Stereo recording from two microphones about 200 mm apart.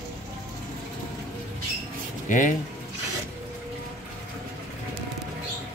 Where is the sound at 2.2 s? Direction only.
40° left (ahead or behind).